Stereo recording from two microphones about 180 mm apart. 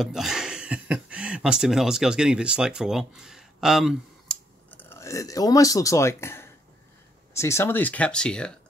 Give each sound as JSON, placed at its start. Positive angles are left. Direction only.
{"t": 0.0, "sound": "speech", "side_deg": 0}
{"t": 4.6, "sound": "speech", "side_deg": 10}